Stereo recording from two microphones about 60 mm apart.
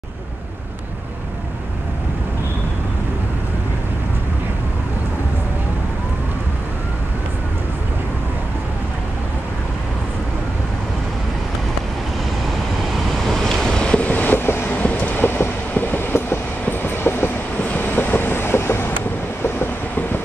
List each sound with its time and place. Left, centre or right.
13.3 s train: centre
15.2 s train: left
17.6 s vehicle: left
19.4 s train: left